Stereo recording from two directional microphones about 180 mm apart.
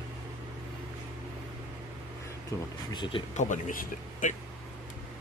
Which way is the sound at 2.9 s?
25° left (ahead or behind).